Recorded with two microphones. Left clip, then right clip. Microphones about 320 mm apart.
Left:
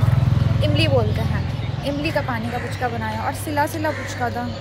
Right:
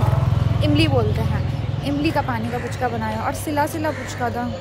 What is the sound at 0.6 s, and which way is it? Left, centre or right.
Vehicle, centre.